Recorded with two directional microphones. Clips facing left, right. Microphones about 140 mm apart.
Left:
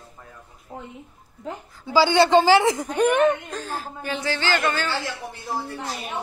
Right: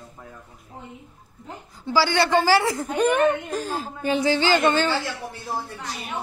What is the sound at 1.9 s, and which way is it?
Speech, 20° left (ahead or behind).